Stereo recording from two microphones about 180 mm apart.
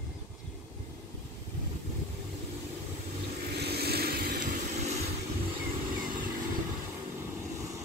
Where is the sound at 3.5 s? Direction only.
65° right (ahead or behind); by 5.0 s 40° right (ahead or behind).